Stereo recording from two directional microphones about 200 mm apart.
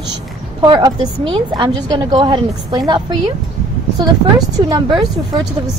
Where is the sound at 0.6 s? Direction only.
20° right (ahead or behind).